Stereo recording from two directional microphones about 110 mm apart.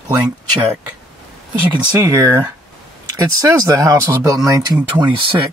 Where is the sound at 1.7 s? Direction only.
40° right (ahead or behind).